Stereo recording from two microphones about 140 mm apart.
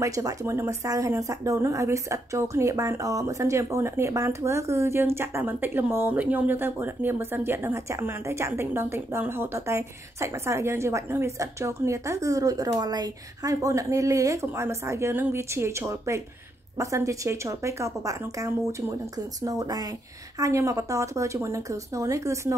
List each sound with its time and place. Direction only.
0.0 s speech: 25° right (ahead or behind)